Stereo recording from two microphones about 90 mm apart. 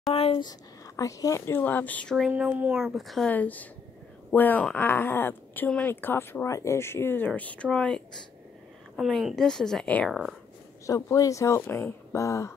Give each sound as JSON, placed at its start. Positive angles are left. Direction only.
{"t": 0.1, "sound": "speech", "side_deg": 90}
{"t": 0.4, "sound": "speech", "side_deg": 45}
{"t": 2.1, "sound": "speech", "side_deg": -10}
{"t": 3.3, "sound": "speech", "side_deg": 20}
{"t": 8.9, "sound": "speech", "side_deg": -5}
{"t": 9.8, "sound": "speech", "side_deg": 15}
{"t": 11.1, "sound": "speech", "side_deg": 35}